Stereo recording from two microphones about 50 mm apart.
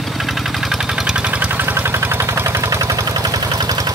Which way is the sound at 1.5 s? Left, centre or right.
Right.